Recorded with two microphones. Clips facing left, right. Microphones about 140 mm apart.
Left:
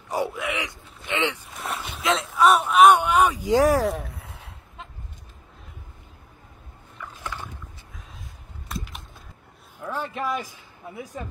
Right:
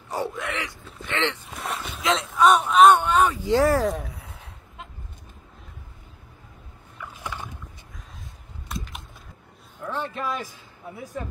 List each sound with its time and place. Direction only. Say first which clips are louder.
0.1 s speech: left 2 dB; 10° left (ahead or behind)
1.6 s speech: even; centre (ahead or behind)
3.9 s a sound: even; centre (ahead or behind)
7.2 s rowboat: even; 15° right (ahead or behind)
8.6 s a sound: even; centre (ahead or behind)
9.8 s speech: even; 10° left (ahead or behind)